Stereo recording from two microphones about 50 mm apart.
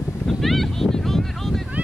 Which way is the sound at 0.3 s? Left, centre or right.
Centre.